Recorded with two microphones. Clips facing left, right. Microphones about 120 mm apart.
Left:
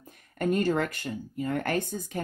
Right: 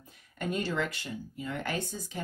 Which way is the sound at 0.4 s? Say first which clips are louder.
Left 6 dB; 50° left (ahead or behind).